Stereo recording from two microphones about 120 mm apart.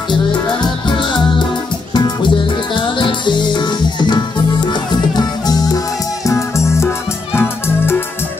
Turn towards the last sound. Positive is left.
turn(degrees=20)  # may be behind; listen again after turning